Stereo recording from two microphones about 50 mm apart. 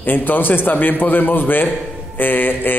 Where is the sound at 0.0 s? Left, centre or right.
Left.